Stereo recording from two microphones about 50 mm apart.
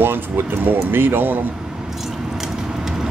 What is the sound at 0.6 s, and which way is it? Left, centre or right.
Speech, right.